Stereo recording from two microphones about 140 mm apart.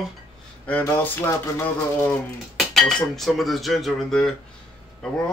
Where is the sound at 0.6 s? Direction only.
15° left (ahead or behind).